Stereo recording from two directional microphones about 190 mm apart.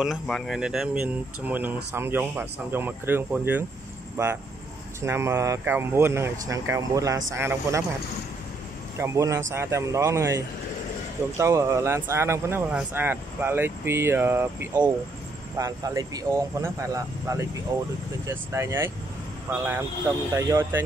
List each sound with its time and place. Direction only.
0.0 s speech: centre (ahead or behind)
8.9 s speech: 15° right (ahead or behind)